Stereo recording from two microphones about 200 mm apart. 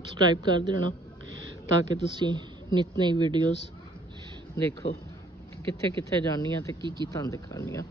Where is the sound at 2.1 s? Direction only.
20° right (ahead or behind).